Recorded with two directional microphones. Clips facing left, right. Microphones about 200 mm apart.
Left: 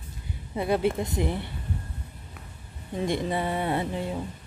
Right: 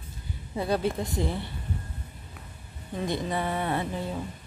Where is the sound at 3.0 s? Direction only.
25° left (ahead or behind).